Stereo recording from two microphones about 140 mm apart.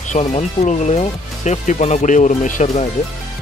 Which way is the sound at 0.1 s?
50° left (ahead or behind).